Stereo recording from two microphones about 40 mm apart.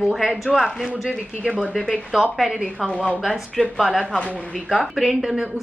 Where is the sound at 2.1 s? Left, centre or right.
Centre.